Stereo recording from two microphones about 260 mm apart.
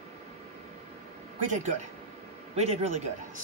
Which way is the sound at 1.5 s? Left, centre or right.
Right.